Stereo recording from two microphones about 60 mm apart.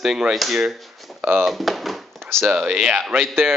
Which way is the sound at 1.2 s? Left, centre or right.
Right.